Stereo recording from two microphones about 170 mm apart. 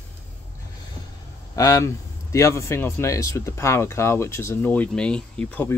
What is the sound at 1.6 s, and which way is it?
Speech, 20° left (ahead or behind).